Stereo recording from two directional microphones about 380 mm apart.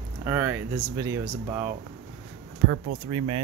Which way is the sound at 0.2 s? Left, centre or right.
Centre.